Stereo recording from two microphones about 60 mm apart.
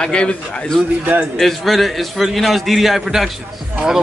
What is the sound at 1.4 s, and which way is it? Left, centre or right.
A man's voice, centre.